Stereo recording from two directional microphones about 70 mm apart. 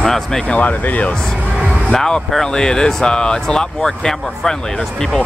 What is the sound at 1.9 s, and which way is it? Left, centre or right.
Speech, centre.